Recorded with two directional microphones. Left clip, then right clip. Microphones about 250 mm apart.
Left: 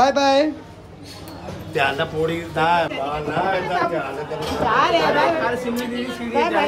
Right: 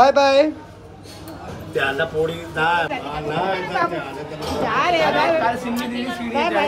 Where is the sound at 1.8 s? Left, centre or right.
Left.